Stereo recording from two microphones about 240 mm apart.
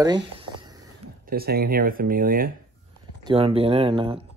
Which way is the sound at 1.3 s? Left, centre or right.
Right.